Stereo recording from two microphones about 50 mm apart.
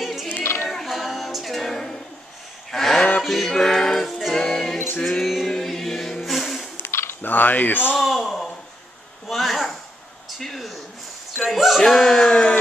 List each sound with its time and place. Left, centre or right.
0.0 s child singing: centre
0.4 s child singing: left
0.7 s music: centre
2.7 s a sound: centre
3.2 s music: centre
5.2 s a capella: centre
5.5 s choir: centre
6.2 s music: centre
6.9 s camera: left
7.2 s speech: left
8.0 s a sound: centre
11.8 s a sound: centre